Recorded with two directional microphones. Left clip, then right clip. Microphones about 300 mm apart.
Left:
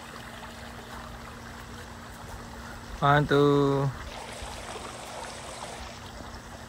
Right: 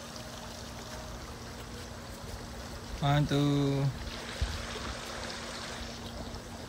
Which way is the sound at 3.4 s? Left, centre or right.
Left.